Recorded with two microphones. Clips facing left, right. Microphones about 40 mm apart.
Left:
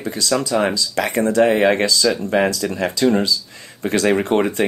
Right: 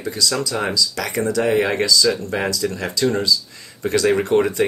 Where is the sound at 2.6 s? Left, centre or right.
Left.